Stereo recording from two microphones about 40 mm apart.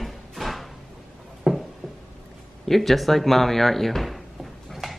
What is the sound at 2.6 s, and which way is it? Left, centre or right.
A woman's voice, centre.